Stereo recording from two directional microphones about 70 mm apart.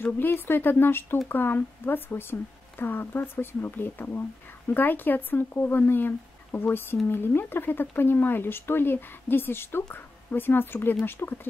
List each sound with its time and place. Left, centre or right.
0.0 s speech: left